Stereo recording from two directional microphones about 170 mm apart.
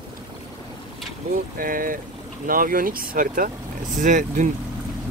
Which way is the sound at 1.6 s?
55° right (ahead or behind).